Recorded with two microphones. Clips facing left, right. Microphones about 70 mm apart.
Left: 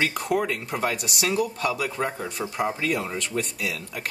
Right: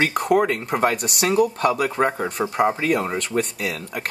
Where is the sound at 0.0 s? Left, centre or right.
Right.